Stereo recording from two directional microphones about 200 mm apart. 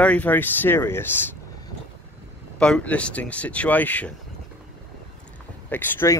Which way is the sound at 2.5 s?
5° left (ahead or behind).